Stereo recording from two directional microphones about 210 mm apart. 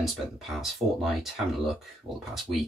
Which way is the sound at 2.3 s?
Centre (ahead or behind).